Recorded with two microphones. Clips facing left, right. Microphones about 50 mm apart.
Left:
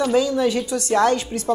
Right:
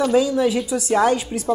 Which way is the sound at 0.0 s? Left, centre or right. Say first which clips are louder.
Right 1 dB; centre.